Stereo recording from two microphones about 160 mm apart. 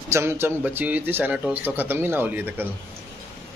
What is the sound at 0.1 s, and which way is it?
A man's voice, 15° right (ahead or behind).